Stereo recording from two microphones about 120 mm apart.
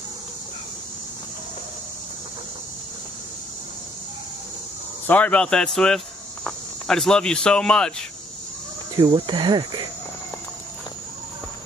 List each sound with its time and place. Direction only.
5.0 s speech: 10° left (ahead or behind)
8.9 s cricket: 40° right (ahead or behind)